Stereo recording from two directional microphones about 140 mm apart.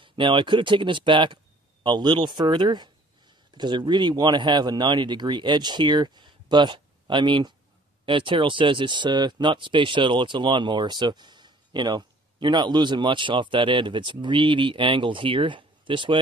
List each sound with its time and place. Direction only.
0.0 s speech: 35° right (ahead or behind)